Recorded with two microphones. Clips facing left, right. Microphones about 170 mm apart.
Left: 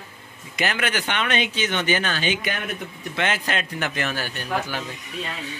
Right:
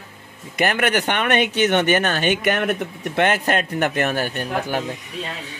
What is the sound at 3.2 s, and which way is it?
A man's voice, 50° right (ahead or behind).